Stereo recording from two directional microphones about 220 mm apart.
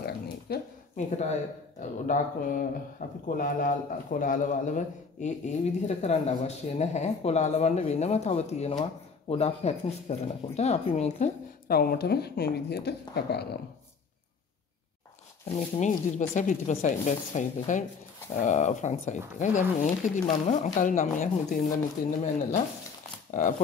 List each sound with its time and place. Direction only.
0.5 s a sound: 45° left (ahead or behind)
0.9 s speech: 30° left (ahead or behind)
11.7 s speech: 45° left (ahead or behind)
15.8 s speech: 35° left (ahead or behind)
23.3 s speech: 35° left (ahead or behind)